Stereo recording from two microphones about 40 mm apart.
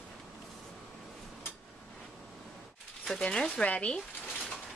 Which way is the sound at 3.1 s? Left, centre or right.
Centre.